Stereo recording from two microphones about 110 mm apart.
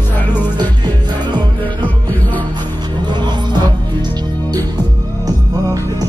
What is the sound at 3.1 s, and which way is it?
Music, 40° right (ahead or behind).